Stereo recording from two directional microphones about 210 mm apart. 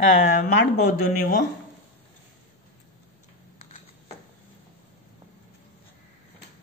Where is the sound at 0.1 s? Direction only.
45° left (ahead or behind).